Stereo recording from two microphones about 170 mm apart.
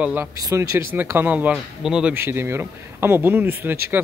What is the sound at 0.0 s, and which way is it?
Speech, 10° right (ahead or behind).